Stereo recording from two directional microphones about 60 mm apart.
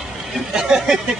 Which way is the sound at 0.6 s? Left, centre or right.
Centre.